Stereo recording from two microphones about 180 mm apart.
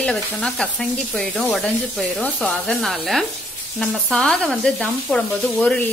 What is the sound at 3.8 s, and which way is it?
Speech, 5° left (ahead or behind).